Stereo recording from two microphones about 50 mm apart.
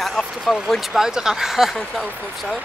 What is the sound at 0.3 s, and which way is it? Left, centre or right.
Speech, centre.